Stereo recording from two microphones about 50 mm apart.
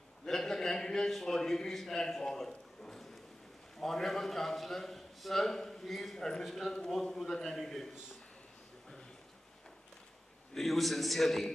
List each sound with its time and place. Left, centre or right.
0.2 s a sound: centre
3.8 s a man's voice: centre
10.5 s a man's voice: centre